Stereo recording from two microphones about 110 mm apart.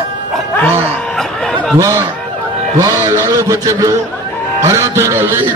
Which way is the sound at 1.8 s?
30° right (ahead or behind).